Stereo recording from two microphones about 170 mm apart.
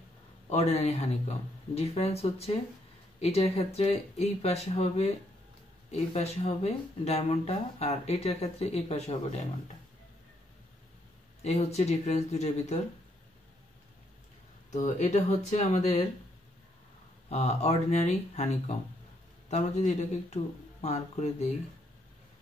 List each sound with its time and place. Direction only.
0.5 s speech: 40° left (ahead or behind)
11.4 s speech: 40° left (ahead or behind)
14.7 s speech: 45° left (ahead or behind)
17.3 s speech: 40° left (ahead or behind)